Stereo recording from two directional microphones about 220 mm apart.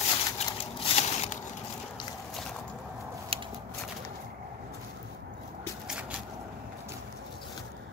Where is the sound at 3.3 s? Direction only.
25° right (ahead or behind).